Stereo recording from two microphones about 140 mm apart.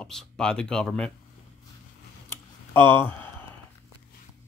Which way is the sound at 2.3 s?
15° left (ahead or behind).